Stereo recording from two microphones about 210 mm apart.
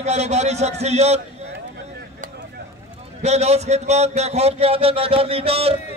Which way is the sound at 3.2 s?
30° right (ahead or behind).